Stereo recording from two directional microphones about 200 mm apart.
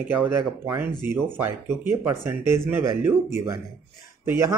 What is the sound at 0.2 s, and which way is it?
Speech, 10° right (ahead or behind).